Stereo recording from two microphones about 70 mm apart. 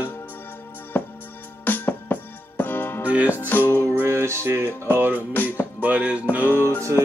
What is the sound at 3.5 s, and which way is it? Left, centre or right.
Music, left.